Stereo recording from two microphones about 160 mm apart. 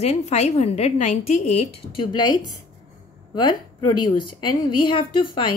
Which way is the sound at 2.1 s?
25° left (ahead or behind).